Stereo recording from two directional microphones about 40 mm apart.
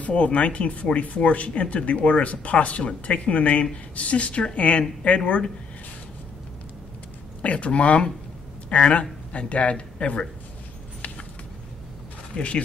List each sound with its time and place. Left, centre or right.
0.0 s speech: left
7.4 s speech: left
12.4 s speech: left